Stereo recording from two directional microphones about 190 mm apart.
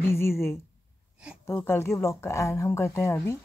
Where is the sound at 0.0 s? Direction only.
15° left (ahead or behind).